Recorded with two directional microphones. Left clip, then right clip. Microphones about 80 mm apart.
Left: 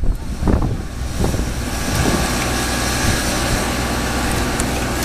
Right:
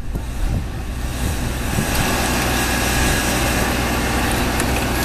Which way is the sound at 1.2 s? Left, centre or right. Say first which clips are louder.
Left 3 dB; centre.